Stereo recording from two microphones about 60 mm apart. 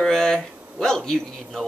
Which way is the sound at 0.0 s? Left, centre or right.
Centre.